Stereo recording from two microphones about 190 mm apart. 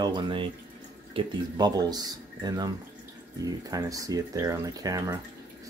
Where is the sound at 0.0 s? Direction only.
25° right (ahead or behind).